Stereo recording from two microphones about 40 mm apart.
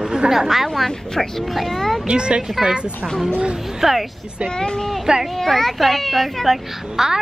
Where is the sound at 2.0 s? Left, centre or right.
Right.